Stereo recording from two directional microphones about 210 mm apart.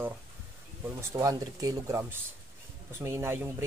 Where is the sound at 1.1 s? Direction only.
15° right (ahead or behind).